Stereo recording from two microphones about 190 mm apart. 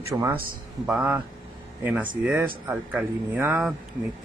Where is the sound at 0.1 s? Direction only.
15° right (ahead or behind).